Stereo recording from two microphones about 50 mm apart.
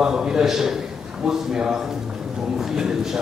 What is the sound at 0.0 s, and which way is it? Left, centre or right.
A man's voice, centre.